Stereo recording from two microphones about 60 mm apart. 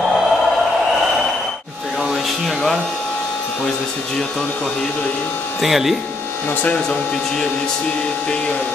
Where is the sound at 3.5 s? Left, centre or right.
Centre.